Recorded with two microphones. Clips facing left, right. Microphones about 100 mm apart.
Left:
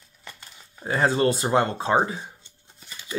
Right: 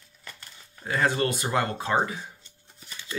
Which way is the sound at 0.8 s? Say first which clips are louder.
Left 4 dB; 30° left (ahead or behind).